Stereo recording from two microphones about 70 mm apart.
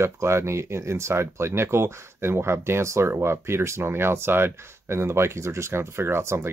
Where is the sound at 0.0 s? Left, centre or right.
Right.